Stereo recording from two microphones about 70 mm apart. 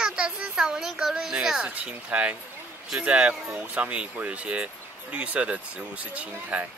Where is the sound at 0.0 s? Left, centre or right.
Centre.